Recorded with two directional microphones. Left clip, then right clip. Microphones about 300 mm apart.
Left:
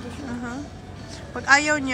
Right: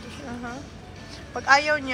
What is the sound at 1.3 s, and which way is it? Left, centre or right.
Speech, centre.